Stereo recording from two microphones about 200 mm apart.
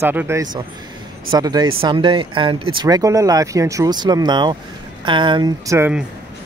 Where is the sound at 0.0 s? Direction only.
10° right (ahead or behind).